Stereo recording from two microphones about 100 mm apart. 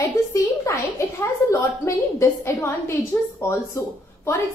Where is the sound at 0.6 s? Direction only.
30° left (ahead or behind).